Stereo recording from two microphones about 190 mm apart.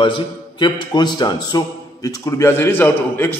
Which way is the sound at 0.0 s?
25° left (ahead or behind).